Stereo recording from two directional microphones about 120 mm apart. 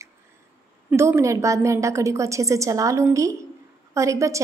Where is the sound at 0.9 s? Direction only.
25° right (ahead or behind).